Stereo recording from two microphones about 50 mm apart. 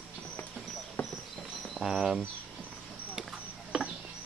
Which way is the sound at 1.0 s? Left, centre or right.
Left.